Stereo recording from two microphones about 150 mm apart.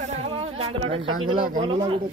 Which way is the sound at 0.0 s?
45° right (ahead or behind).